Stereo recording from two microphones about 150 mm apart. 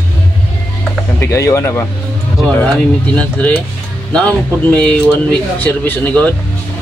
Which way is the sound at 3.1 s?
10° left (ahead or behind).